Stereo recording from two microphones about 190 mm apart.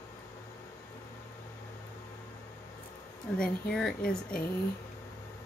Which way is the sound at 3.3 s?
5° left (ahead or behind).